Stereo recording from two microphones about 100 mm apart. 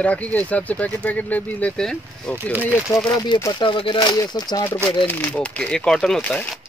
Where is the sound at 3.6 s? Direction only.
60° left (ahead or behind).